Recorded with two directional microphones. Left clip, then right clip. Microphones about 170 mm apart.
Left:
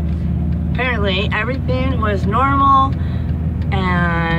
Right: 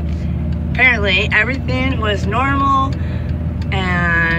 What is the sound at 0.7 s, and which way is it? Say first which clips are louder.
Speech: right 7 dB; 10° left (ahead or behind).